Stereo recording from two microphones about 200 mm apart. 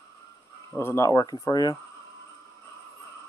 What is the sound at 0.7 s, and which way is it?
Speech, 15° left (ahead or behind).